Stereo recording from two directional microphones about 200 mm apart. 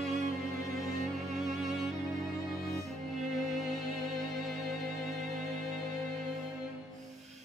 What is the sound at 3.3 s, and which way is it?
Music, centre (ahead or behind).